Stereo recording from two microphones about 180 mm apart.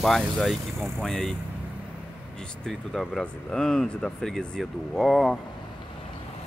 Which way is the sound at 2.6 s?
Centre (ahead or behind).